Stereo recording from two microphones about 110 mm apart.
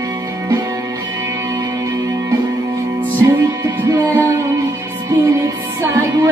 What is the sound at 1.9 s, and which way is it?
Music, 30° right (ahead or behind).